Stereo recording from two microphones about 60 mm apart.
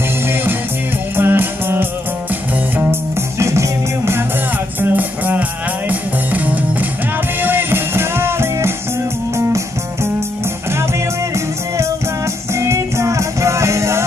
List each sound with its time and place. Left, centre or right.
1.1 s music: right
3.3 s music: right
4.7 s music: right
7.4 s music: right
11.3 s music: right